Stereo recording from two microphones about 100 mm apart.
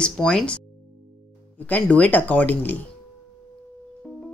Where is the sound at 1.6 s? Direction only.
15° left (ahead or behind).